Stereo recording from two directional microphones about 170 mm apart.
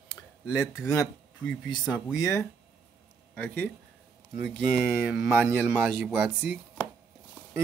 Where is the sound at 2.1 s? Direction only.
20° left (ahead or behind).